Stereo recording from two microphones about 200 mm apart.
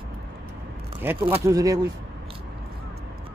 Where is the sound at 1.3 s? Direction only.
15° right (ahead or behind).